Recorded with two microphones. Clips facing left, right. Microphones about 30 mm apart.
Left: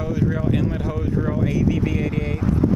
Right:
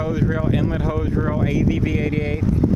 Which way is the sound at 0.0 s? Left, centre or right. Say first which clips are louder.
Right 1 dB; centre.